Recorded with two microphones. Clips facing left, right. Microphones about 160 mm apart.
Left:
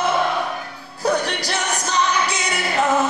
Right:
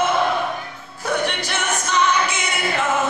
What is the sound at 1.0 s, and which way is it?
Music, 35° left (ahead or behind).